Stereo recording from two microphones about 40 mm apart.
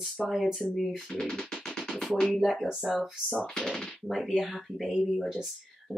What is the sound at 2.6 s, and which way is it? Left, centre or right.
Speech, centre.